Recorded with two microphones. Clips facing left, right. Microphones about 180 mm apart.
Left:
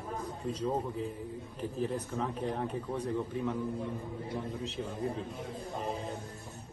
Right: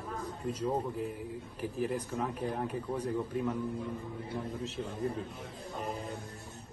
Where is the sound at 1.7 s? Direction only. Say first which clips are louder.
Even; 10° right (ahead or behind).